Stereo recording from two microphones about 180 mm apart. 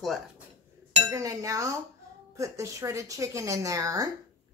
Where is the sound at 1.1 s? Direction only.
15° right (ahead or behind).